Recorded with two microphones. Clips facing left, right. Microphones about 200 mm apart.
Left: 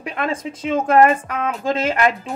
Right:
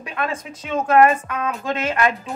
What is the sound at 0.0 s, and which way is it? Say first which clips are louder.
A woman's voice: left 3 dB; 30° left (ahead or behind).